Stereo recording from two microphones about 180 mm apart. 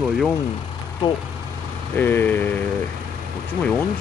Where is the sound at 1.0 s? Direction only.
25° left (ahead or behind).